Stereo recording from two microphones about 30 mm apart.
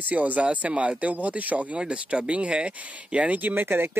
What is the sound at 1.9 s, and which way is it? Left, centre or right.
Speech, right.